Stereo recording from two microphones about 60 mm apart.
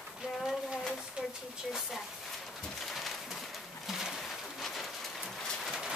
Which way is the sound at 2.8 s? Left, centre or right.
Centre.